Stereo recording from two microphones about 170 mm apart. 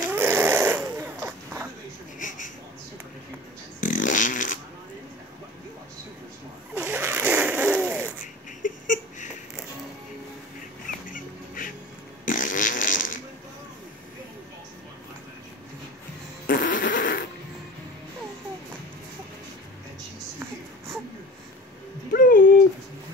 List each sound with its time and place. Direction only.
0.1 s snoring: 15° right (ahead or behind)
2.1 s a sound: 50° left (ahead or behind)
3.8 s fart: 50° left (ahead or behind)
6.8 s zipper: 15° right (ahead or behind)
8.6 s whimper: 50° left (ahead or behind)
11.1 s duck: 55° left (ahead or behind)
12.3 s fart: 50° left (ahead or behind)
16.4 s fart: 50° left (ahead or behind)
22.1 s a sound: 55° left (ahead or behind)